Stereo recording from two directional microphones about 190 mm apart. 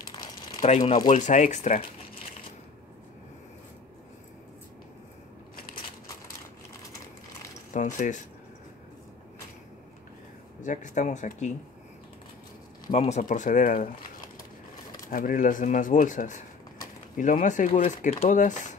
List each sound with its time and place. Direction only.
0.0 s crumpling: 20° left (ahead or behind)
0.6 s speech: 35° left (ahead or behind)
7.7 s speech: 40° left (ahead or behind)
10.6 s speech: 40° left (ahead or behind)
12.9 s speech: 35° left (ahead or behind)
15.0 s speech: 45° left (ahead or behind)